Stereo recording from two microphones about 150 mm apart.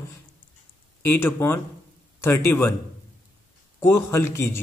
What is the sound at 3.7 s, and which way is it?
Speech, 15° left (ahead or behind).